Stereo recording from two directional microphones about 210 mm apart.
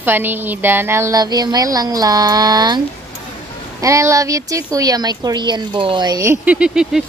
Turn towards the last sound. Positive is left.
turn(degrees=-5)  # may be behind; listen again after turning